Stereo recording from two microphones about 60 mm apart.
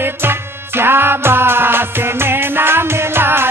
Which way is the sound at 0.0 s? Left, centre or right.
Right.